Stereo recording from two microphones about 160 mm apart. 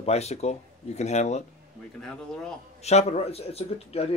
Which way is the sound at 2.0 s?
5° left (ahead or behind).